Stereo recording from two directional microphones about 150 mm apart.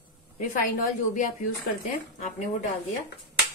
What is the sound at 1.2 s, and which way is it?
Speech, 60° left (ahead or behind).